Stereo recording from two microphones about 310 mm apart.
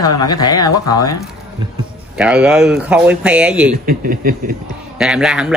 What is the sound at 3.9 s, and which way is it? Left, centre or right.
Speech, right.